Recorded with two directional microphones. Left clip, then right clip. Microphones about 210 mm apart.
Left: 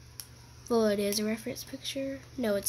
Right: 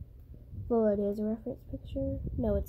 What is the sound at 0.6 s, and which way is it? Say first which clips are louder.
Speech: left 1 dB; 15° left (ahead or behind).